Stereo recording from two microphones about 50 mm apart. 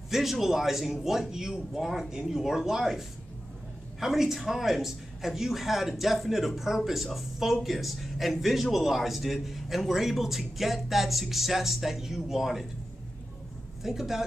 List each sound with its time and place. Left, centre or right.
0.1 s a man's voice: centre
13.8 s a man's voice: centre